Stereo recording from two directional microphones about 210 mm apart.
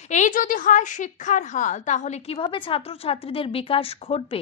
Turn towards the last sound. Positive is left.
turn(degrees=25)  # may be behind; listen again after turning